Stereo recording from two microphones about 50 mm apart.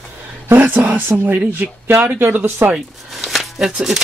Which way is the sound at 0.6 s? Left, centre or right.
Right.